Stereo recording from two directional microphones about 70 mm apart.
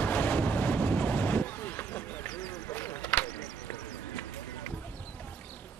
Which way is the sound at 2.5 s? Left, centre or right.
Left.